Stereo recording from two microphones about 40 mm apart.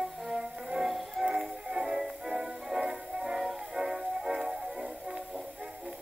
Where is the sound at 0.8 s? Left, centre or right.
Centre.